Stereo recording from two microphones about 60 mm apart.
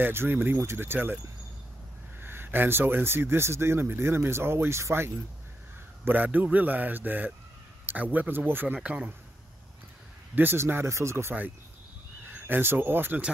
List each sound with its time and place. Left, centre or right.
0.0 s speech: right
6.0 s a man's voice: right
8.7 s speech: centre
10.3 s speech: right
12.3 s speech: right